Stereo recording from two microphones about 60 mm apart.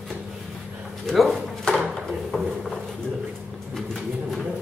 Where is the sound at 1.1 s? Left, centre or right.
Centre.